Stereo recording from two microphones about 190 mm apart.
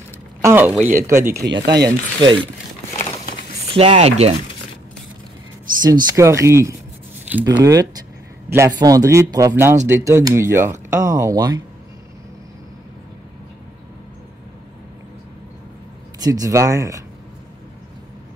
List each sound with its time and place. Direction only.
0.4 s a sound: 15° right (ahead or behind)
0.7 s speech: 10° right (ahead or behind)
1.4 s speech: 60° right (ahead or behind)
1.9 s speech: 25° right (ahead or behind)
3.7 s speech: 35° right (ahead or behind)
5.9 s speech: 15° right (ahead or behind)
16.2 s speech: 20° right (ahead or behind)